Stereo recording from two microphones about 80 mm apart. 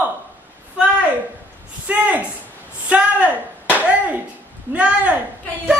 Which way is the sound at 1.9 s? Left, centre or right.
Right.